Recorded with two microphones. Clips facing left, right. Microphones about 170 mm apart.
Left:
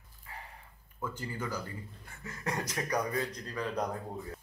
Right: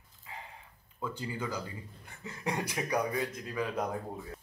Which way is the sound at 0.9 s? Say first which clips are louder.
Right 1 dB; 15° right (ahead or behind).